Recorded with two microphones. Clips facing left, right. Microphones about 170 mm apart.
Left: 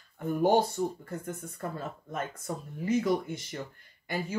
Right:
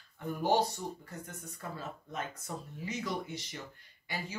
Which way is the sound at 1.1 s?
50° left (ahead or behind).